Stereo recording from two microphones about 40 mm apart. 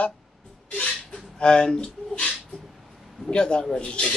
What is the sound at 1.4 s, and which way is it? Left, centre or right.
Speech, centre.